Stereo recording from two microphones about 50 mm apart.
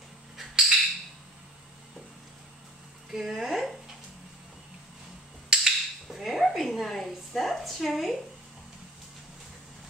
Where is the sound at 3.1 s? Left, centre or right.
Centre.